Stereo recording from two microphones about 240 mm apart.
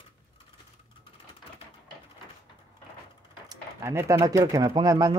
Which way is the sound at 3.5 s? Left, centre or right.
Centre.